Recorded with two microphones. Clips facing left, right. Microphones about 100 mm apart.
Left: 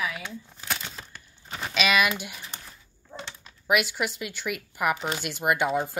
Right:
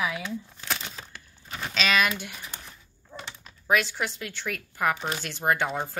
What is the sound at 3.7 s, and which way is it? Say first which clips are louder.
Speech: even; 10° left (ahead or behind).